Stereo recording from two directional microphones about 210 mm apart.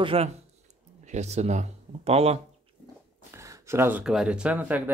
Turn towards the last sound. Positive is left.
turn(degrees=-5)  # may be behind; listen again after turning